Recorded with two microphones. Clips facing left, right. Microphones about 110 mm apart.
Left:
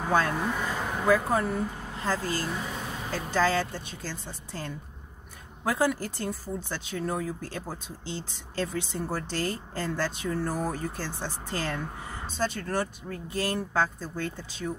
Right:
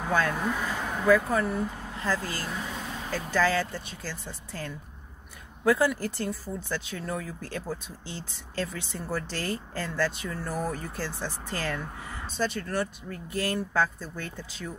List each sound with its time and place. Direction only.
0.1 s speech: 35° left (ahead or behind)
0.4 s speech: centre (ahead or behind)
1.0 s speech: 30° left (ahead or behind)